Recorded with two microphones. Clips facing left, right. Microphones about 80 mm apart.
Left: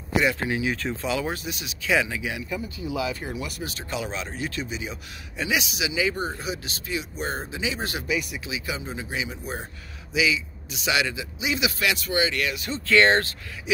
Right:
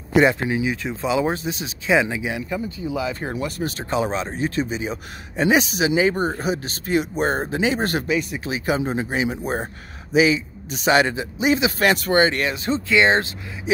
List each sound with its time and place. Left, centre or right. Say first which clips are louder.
0.5 s a man's voice: right 3 dB; centre; by 8.0 s right
8.1 s a man's voice: right 5 dB; right
12.8 s speech: even; centre